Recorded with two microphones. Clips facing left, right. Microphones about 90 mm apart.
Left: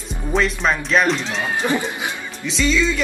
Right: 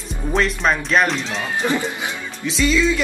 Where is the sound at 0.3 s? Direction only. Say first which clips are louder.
Even; centre (ahead or behind).